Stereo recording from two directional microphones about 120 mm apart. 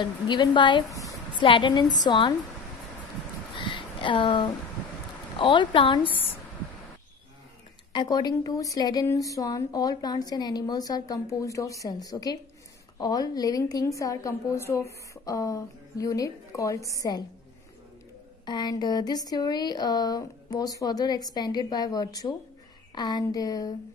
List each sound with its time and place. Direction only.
0.0 s speech: 40° left (ahead or behind)
0.8 s a woman's voice: 30° left (ahead or behind)
1.4 s speech: 45° left (ahead or behind)
3.6 s a sound: 45° left (ahead or behind)
5.4 s a woman's voice: 40° left (ahead or behind)
7.9 s a woman's voice: 35° left (ahead or behind)
18.4 s speech: 35° left (ahead or behind)